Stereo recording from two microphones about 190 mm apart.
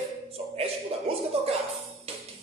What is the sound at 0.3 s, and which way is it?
Music, 30° right (ahead or behind).